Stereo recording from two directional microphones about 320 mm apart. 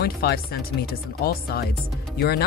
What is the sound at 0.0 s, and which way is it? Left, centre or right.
Speech, left.